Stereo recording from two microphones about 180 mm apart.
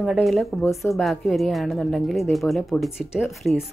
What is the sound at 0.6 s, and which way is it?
Speech, 15° left (ahead or behind).